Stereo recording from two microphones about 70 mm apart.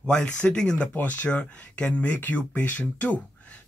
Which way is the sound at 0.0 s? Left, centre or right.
Centre.